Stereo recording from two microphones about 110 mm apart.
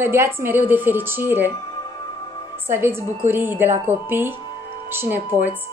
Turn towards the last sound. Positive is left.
turn(degrees=-15)  # may be behind; listen again after turning